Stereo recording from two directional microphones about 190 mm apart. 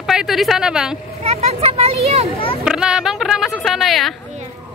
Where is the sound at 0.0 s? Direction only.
Centre (ahead or behind).